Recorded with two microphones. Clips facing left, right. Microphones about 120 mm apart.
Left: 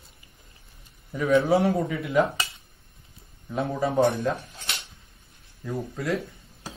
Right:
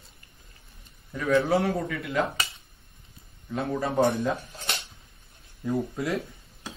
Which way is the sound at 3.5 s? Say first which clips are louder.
Left 2 dB; centre (ahead or behind).